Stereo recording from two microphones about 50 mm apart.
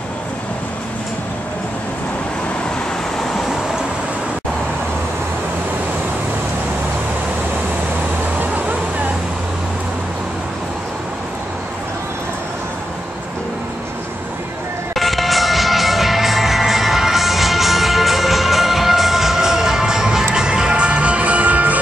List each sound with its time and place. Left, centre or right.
3.2 s vehicle: centre
15.0 s music: centre; by 21.7 s right